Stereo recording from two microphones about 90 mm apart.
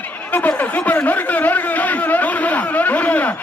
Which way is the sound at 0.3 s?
15° left (ahead or behind).